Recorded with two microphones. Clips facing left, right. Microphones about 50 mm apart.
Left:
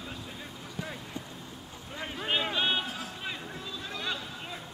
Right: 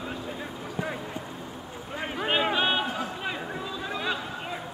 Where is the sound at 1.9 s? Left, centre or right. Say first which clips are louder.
Right 5 dB; right.